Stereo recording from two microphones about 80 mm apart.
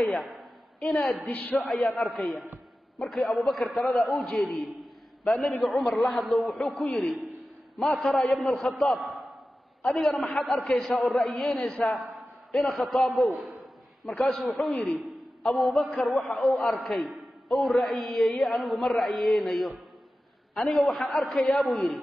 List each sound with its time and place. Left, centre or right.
0.0 s a woman's voice: centre
1.2 s a man's voice: left
1.6 s speech: centre
7.8 s a man's voice: centre